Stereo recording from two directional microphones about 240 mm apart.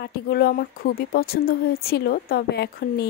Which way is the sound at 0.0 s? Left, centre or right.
Left.